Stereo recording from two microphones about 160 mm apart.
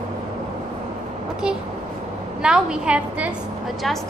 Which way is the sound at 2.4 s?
5° right (ahead or behind).